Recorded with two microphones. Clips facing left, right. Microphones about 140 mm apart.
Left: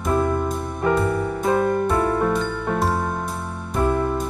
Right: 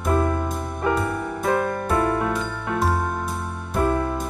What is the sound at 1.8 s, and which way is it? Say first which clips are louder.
Music: left 2 dB; centre (ahead or behind).